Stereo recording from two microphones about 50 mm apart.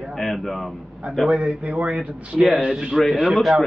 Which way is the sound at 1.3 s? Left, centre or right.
Right.